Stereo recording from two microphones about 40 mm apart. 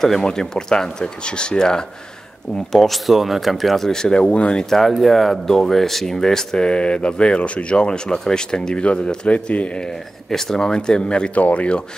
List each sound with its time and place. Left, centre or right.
0.0 s speech: centre
2.7 s speech: centre
4.2 s speech: left
4.6 s speech: centre; by 9.4 s left
10.3 s speech: centre; by 11.8 s left